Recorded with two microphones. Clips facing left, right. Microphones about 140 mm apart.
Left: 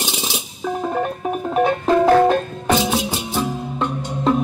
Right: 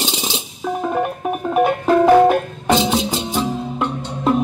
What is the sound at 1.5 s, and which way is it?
Music, 10° right (ahead or behind).